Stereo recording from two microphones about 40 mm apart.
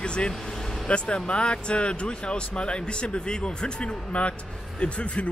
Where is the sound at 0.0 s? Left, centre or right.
Left.